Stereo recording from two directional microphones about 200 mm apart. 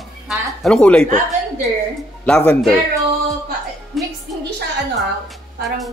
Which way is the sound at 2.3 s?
5° left (ahead or behind).